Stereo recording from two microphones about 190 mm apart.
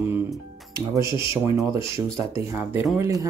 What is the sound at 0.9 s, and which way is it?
Speech, 25° left (ahead or behind).